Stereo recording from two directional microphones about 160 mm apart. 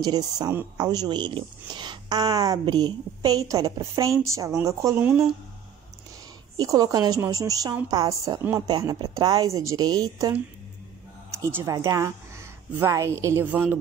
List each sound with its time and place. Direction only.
0.0 s speech: 25° right (ahead or behind)
6.5 s speech: 25° right (ahead or behind)
11.3 s a woman's voice: 20° right (ahead or behind)